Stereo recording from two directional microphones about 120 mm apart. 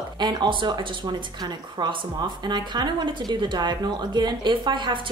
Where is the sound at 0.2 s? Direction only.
40° right (ahead or behind).